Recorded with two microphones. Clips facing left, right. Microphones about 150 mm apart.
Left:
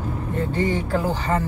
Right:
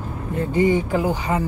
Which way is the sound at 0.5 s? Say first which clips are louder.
Right 6 dB; 15° right (ahead or behind).